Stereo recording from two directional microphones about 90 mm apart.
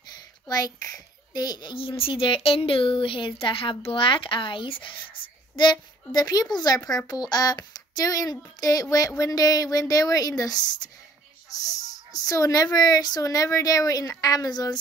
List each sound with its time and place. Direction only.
0.1 s a child's voice: 45° left (ahead or behind); by 5.0 s 70° left (ahead or behind)
5.6 s speech: 50° left (ahead or behind)
11.6 s speech: 40° left (ahead or behind)